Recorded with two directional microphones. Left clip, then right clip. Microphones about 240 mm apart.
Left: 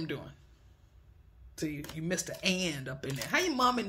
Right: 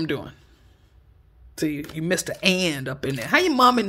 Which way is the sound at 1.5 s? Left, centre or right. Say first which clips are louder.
Right 11 dB; right.